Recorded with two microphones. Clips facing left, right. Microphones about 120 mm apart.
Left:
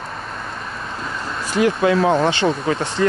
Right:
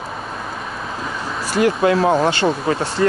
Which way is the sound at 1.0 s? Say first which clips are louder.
Right 1 dB; 5° right (ahead or behind).